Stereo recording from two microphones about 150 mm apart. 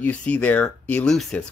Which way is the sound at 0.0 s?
10° left (ahead or behind).